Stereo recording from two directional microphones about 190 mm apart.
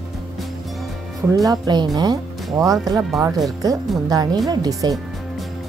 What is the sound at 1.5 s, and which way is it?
Speech, 20° right (ahead or behind).